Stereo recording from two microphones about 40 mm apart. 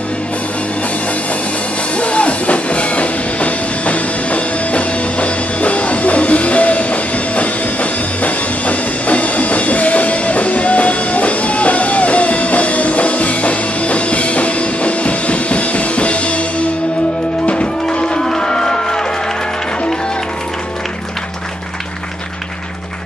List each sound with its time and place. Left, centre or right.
2.0 s music: left
17.9 s music: left